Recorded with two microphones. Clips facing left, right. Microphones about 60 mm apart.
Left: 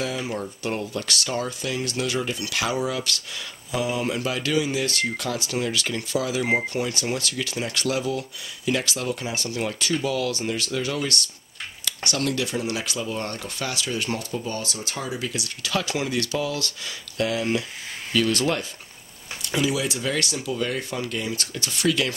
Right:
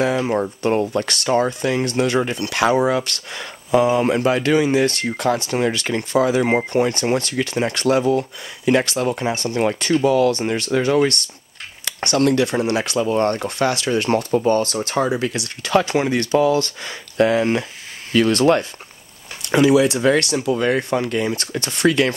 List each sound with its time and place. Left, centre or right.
0.1 s speech: right
0.4 s speech: right
17.4 s speech: right
18.1 s speech: right